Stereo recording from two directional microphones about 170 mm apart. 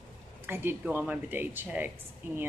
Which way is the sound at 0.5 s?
10° right (ahead or behind).